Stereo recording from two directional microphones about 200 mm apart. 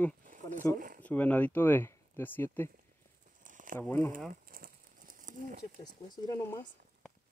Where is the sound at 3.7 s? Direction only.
10° left (ahead or behind).